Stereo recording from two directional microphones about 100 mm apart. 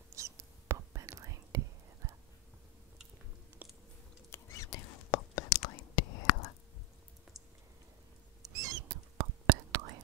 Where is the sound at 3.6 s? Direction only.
15° right (ahead or behind).